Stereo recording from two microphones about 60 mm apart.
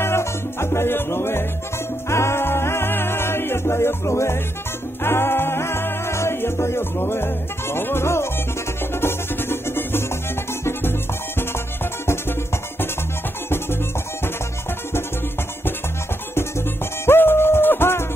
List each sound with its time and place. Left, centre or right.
0.0 s music: left
5.0 s music: left
16.3 s music: left